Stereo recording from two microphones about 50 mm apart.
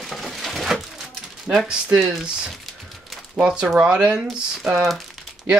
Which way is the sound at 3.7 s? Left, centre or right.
Centre.